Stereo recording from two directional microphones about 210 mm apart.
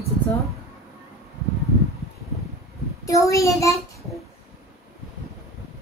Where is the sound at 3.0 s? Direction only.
15° left (ahead or behind).